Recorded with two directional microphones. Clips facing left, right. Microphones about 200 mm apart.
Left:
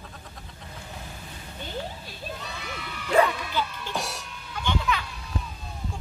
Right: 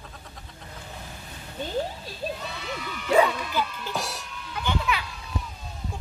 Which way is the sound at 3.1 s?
10° right (ahead or behind).